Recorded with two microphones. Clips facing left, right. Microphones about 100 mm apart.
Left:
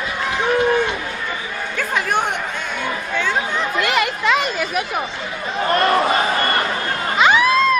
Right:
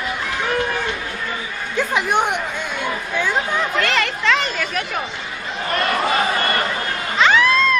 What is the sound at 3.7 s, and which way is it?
Children playing, 15° left (ahead or behind).